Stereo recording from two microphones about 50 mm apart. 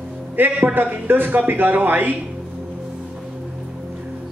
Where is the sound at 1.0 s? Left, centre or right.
Right.